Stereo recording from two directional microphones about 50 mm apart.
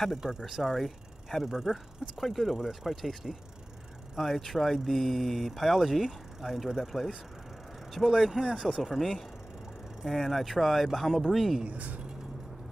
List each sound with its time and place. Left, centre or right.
0.5 s speech: centre
11.6 s speech: right